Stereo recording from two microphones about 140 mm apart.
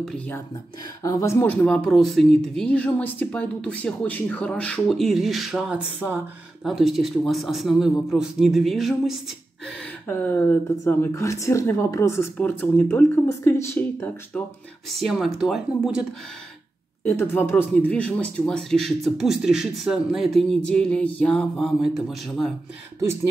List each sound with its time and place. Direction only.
1.0 s speech: 20° left (ahead or behind); by 6.2 s 10° right (ahead or behind)
6.6 s speech: centre (ahead or behind)
10.0 s speech: 15° left (ahead or behind)
14.9 s speech: centre (ahead or behind)
17.0 s speech: 15° left (ahead or behind)